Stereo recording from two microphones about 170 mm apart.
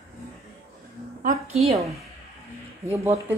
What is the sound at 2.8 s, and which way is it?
Speech, 15° right (ahead or behind).